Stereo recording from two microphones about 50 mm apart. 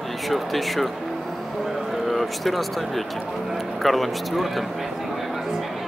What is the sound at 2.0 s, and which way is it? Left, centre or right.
A man's voice, centre.